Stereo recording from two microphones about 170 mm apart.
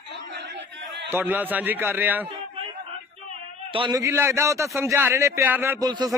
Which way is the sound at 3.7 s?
30° right (ahead or behind).